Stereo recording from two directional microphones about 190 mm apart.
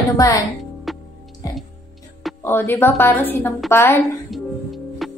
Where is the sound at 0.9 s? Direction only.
Centre (ahead or behind).